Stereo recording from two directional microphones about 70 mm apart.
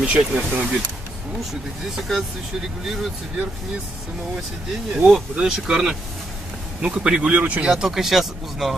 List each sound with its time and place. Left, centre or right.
0.0 s speech: centre
1.5 s speech: centre
4.9 s speech: centre
7.7 s speech: centre